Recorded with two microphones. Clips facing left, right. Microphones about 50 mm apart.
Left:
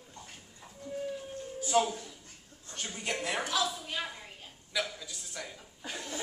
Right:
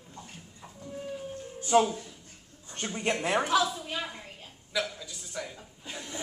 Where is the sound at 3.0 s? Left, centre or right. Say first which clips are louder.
Right 6 dB; right.